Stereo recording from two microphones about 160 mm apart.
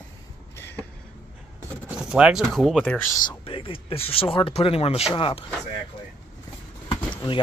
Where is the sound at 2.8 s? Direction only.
15° left (ahead or behind).